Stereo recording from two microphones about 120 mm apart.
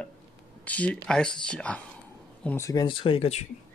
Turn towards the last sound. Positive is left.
turn(degrees=60)  # may be behind; listen again after turning